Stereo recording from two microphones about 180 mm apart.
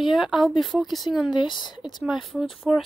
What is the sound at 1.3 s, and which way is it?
Speech, 25° left (ahead or behind).